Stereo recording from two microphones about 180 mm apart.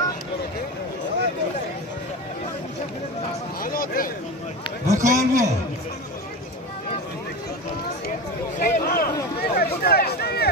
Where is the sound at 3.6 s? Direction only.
55° left (ahead or behind).